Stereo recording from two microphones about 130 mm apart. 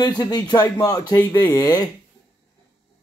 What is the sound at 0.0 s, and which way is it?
Speech, 30° left (ahead or behind).